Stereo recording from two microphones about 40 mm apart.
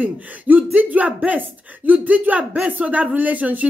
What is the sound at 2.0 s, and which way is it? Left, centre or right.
Speech, right.